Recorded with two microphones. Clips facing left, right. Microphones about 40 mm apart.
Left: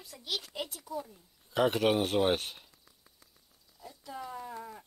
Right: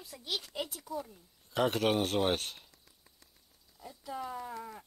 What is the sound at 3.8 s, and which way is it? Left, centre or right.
Speech, centre.